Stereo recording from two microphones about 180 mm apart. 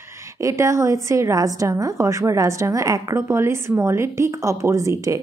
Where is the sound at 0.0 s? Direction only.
15° right (ahead or behind).